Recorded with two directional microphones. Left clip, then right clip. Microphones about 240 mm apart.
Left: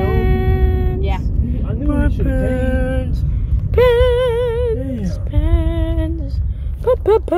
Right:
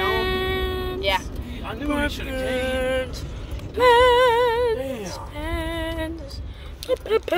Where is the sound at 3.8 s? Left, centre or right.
Centre.